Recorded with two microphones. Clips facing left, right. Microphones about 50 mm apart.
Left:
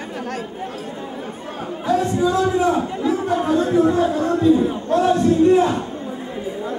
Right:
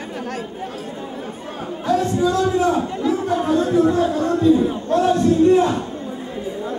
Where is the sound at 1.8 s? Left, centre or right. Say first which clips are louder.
Even; centre.